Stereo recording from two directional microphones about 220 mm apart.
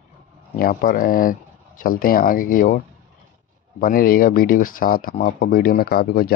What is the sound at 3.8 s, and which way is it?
Speech, 40° left (ahead or behind).